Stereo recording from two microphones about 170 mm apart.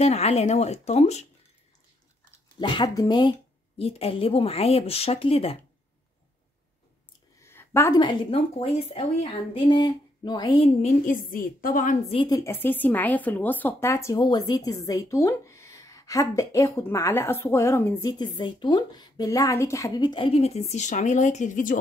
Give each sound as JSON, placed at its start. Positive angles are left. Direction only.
{"t": 0.0, "sound": "a woman's voice", "side_deg": 40}
{"t": 2.6, "sound": "a woman's voice", "side_deg": 25}
{"t": 7.4, "sound": "a sound", "side_deg": 15}
{"t": 8.0, "sound": "a woman's voice", "side_deg": 30}
{"t": 10.8, "sound": "a woman's voice", "side_deg": 55}
{"t": 12.1, "sound": "a woman's voice", "side_deg": 30}
{"t": 12.4, "sound": "speech", "side_deg": 15}
{"t": 18.2, "sound": "a woman's voice", "side_deg": 25}